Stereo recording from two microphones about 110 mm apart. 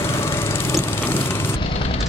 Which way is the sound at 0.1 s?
20° left (ahead or behind).